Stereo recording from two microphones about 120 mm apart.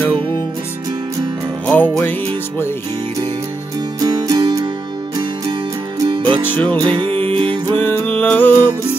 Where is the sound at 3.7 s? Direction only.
35° right (ahead or behind).